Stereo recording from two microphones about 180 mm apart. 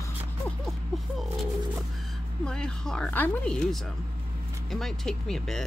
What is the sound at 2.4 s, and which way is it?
Speech, 5° left (ahead or behind).